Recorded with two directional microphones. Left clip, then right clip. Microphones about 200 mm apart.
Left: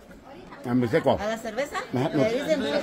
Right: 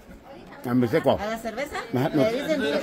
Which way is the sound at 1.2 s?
Centre (ahead or behind).